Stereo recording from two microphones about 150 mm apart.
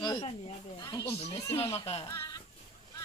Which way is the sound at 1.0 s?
40° left (ahead or behind).